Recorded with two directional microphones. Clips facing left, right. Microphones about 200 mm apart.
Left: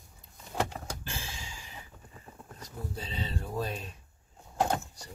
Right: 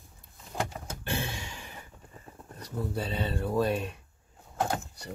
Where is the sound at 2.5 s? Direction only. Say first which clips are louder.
Right 8 dB; 65° right (ahead or behind).